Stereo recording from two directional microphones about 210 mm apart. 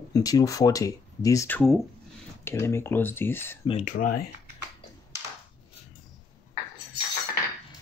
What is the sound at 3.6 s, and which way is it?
Speech, 35° left (ahead or behind).